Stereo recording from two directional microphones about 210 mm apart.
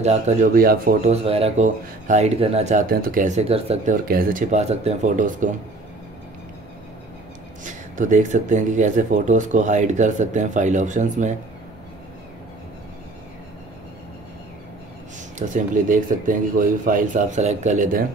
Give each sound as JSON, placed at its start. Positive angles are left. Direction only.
{"t": 0.0, "sound": "speech", "side_deg": -35}
{"t": 7.6, "sound": "speech", "side_deg": -35}
{"t": 15.3, "sound": "speech", "side_deg": -35}